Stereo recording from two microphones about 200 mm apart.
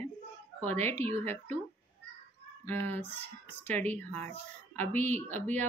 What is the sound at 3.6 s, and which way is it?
Speech, 10° left (ahead or behind).